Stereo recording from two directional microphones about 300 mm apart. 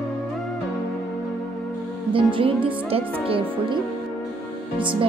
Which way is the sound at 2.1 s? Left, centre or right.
Centre.